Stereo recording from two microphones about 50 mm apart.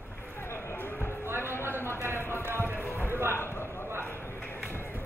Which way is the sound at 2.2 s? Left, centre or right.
Left.